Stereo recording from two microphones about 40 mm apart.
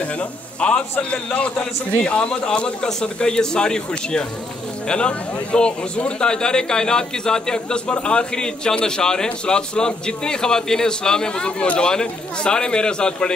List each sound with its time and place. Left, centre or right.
0.0 s a man's voice: left